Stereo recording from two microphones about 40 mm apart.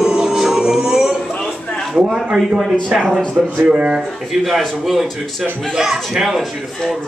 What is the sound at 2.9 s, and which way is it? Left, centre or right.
Speech, centre.